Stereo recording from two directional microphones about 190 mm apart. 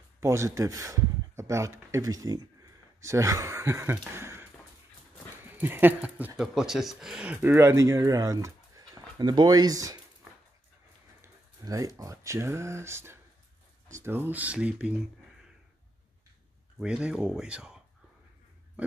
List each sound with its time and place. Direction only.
0.2 s speech: 15° right (ahead or behind)
11.1 s a sound: 15° right (ahead or behind)
12.0 s speech: 15° right (ahead or behind)
16.8 s speech: 5° right (ahead or behind)